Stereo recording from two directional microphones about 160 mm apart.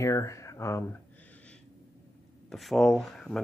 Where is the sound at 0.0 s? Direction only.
20° left (ahead or behind).